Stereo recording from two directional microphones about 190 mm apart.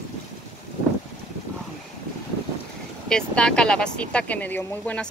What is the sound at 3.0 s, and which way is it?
Speech, 5° left (ahead or behind).